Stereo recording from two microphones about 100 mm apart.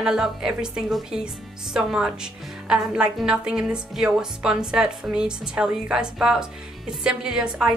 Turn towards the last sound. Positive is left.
turn(degrees=-5)  # may be behind; listen again after turning